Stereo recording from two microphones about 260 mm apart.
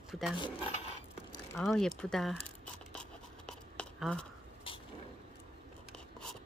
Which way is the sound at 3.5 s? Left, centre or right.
Centre.